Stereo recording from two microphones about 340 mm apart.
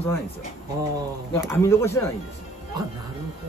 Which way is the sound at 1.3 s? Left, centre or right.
Centre.